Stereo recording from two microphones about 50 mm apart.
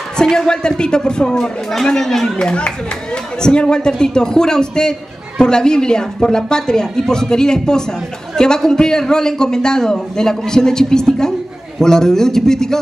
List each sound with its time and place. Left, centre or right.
0.2 s a man's voice: centre
2.3 s a man's voice: centre